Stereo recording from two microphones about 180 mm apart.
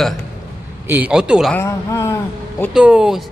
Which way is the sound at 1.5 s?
15° left (ahead or behind).